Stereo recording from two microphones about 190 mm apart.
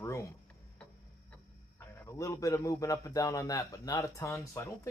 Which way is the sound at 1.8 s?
10° left (ahead or behind).